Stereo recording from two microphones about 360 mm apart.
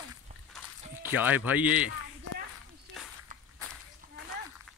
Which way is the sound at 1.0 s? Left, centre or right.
Centre.